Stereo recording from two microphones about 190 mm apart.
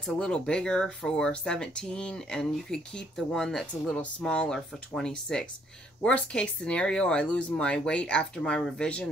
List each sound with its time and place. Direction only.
0.0 s speech: 5° left (ahead or behind)